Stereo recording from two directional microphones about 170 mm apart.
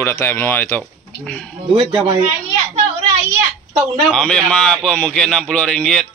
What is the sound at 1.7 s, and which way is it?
Speech, 25° right (ahead or behind).